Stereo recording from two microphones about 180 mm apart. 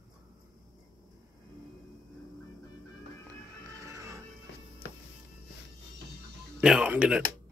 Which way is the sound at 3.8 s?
15° right (ahead or behind).